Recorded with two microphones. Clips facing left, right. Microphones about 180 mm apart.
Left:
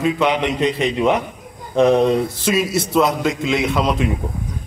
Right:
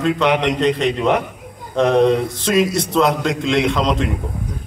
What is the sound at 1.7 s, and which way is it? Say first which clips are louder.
A man's voice: even; 10° left (ahead or behind).